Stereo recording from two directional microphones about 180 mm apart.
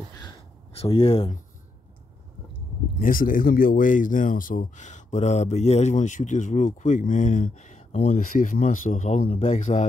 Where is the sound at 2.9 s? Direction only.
50° left (ahead or behind).